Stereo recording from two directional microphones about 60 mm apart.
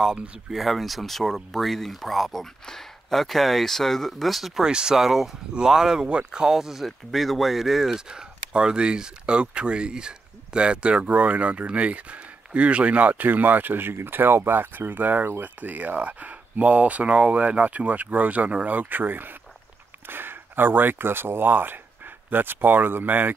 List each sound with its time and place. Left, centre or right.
0.5 s speech: centre
4.6 s speech: centre; by 23.3 s right